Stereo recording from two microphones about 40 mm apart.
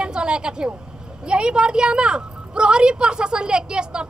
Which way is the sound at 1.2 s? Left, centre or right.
Right.